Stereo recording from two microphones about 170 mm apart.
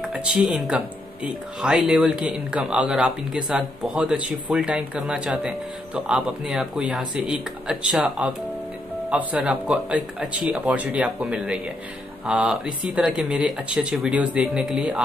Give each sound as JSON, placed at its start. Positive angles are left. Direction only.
{"t": 0.0, "sound": "speech", "side_deg": -5}